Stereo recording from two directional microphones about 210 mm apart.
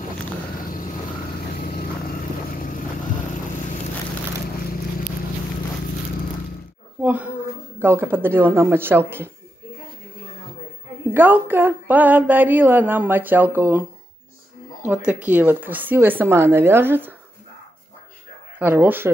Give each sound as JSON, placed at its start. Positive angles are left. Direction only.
{"t": 1.7, "sound": "vehicle", "side_deg": 45}
{"t": 7.0, "sound": "a sound", "side_deg": -5}
{"t": 7.8, "sound": "speech", "side_deg": -10}
{"t": 11.1, "sound": "speech", "side_deg": -10}
{"t": 18.6, "sound": "speech", "side_deg": -10}